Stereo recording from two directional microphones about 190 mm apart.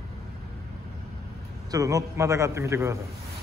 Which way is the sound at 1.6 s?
15° right (ahead or behind).